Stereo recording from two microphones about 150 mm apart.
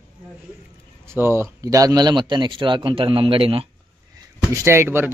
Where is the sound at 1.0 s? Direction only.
15° right (ahead or behind); by 3.6 s 35° right (ahead or behind).